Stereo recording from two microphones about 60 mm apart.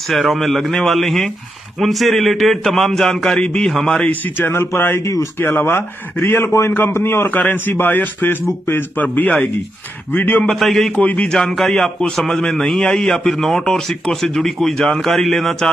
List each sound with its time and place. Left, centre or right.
0.0 s a man's voice: centre
4.1 s a man's voice: left
10.4 s a man's voice: centre
11.1 s a man's voice: left
11.3 s speech: centre